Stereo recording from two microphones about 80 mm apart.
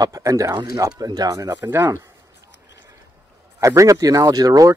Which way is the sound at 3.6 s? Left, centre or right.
Right.